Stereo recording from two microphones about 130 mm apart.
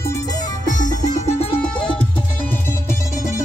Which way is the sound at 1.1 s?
55° left (ahead or behind).